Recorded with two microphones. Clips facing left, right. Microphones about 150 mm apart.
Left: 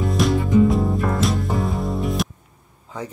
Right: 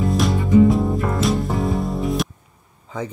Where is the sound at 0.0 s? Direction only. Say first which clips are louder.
Even; centre (ahead or behind).